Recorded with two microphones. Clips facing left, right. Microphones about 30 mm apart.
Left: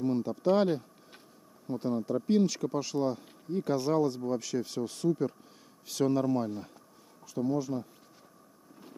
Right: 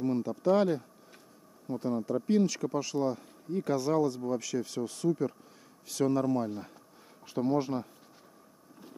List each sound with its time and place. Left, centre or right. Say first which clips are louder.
0.0 s speech: even; centre
6.5 s speech: even; centre
7.2 s speech: right 2 dB; right